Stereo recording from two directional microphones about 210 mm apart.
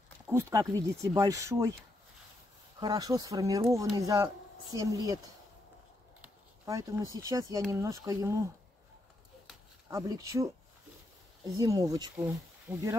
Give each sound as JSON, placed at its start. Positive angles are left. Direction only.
{"t": 0.3, "sound": "speech", "side_deg": -15}
{"t": 2.8, "sound": "speech", "side_deg": -20}
{"t": 6.2, "sound": "a sound", "side_deg": -15}
{"t": 7.2, "sound": "speech", "side_deg": -15}
{"t": 9.8, "sound": "speech", "side_deg": -15}
{"t": 12.7, "sound": "speech", "side_deg": -5}